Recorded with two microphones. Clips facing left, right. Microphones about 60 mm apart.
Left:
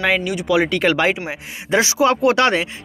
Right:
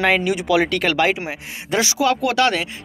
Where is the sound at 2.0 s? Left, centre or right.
Left.